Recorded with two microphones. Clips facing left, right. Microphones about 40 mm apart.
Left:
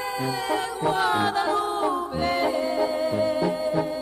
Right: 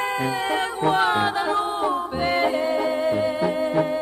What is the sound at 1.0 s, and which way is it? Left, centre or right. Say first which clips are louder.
Music: right 2 dB; right.